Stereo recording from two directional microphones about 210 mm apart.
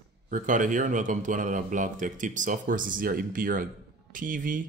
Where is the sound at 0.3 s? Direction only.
40° right (ahead or behind).